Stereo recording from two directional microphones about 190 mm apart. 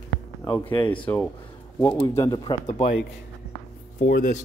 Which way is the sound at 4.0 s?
50° left (ahead or behind).